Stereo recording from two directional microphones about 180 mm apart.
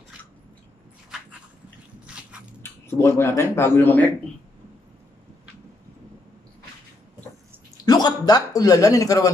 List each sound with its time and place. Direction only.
2.6 s speech: 15° left (ahead or behind)
7.7 s speech: 20° left (ahead or behind)